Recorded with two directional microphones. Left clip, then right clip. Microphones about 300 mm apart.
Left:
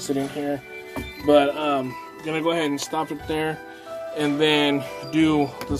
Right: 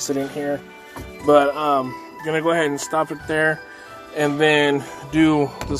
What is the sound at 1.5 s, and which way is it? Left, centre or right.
Speech, centre.